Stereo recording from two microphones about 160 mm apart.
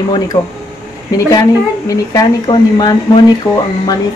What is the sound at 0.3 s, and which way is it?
Speech, 20° left (ahead or behind).